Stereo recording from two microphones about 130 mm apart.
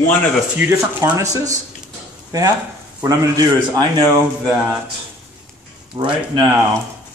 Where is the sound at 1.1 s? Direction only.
25° right (ahead or behind).